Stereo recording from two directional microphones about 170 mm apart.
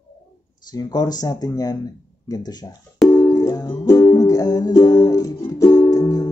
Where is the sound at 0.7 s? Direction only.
25° left (ahead or behind).